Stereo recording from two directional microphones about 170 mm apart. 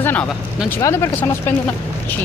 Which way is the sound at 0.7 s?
15° left (ahead or behind).